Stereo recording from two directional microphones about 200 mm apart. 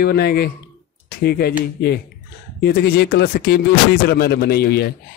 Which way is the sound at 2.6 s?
55° left (ahead or behind).